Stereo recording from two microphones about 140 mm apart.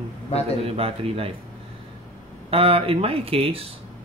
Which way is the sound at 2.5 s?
40° right (ahead or behind).